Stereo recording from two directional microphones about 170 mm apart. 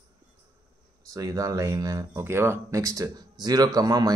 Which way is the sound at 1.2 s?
20° right (ahead or behind).